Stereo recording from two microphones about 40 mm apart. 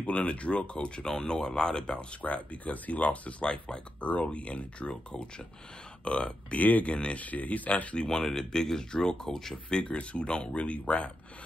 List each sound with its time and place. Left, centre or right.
0.0 s speech: left
2.2 s speech: left
6.6 s speech: left
7.0 s speech: left
7.2 s speech: left
8.1 s speech: centre; by 11.1 s left